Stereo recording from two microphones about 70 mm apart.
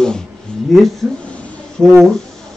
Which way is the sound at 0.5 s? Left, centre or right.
Centre.